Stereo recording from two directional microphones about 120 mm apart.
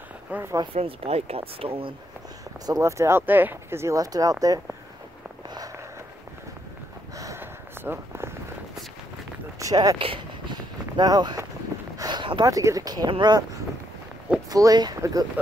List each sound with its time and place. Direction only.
0.3 s speech: 20° right (ahead or behind)
0.7 s speech: 55° right (ahead or behind)
2.6 s speech: 25° right (ahead or behind)
7.2 s snort: 30° right (ahead or behind)
7.8 s a sound: 20° right (ahead or behind)
9.6 s speech: 30° right (ahead or behind)
9.9 s a sound: 45° right (ahead or behind)
12.4 s speech: 30° right (ahead or behind)
14.5 s speech: 30° right (ahead or behind)